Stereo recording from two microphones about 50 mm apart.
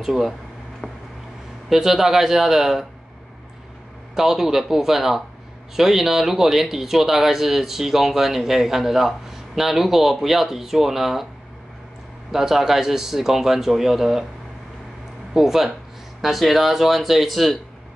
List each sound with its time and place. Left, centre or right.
0.0 s speech: centre
1.7 s speech: centre
4.1 s speech: centre
12.3 s speech: centre
15.3 s speech: centre